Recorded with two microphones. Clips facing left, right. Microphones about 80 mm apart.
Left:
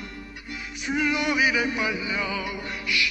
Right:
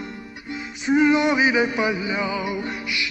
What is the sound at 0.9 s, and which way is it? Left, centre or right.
Music, right.